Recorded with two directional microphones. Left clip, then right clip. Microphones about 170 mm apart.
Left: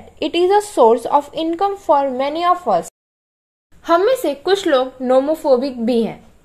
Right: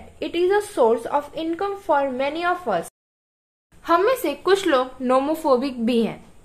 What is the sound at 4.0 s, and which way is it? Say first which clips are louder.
A woman's voice: left 4 dB; 20° left (ahead or behind).